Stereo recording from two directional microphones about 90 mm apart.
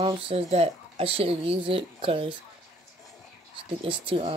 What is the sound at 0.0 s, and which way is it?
Speech, 90° right.